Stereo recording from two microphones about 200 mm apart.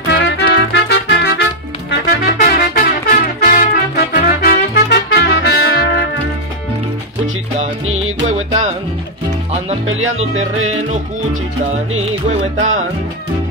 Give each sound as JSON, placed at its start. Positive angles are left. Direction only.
{"t": 0.1, "sound": "music", "side_deg": 60}
{"t": 7.5, "sound": "music", "side_deg": -35}
{"t": 9.8, "sound": "music", "side_deg": -75}
{"t": 10.1, "sound": "music", "side_deg": -35}
{"t": 12.5, "sound": "music", "side_deg": -40}